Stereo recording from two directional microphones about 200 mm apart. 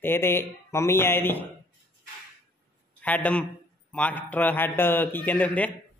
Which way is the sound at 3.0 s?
5° left (ahead or behind).